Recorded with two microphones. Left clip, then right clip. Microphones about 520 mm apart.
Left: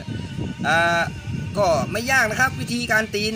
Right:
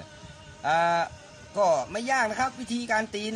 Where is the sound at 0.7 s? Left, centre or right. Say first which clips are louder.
Left 5 dB; right.